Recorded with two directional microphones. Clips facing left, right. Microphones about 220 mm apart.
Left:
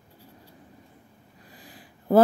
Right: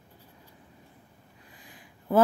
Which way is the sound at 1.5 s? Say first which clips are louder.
Left 5 dB; 35° left (ahead or behind).